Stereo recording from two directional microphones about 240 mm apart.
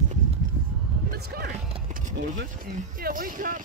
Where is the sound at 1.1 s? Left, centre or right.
Right.